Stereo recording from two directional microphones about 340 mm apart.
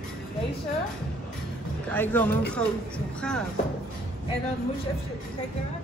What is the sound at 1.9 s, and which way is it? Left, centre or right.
A woman's voice, centre.